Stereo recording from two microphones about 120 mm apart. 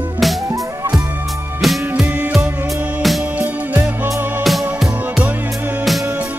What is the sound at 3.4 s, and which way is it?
Music, 15° right (ahead or behind).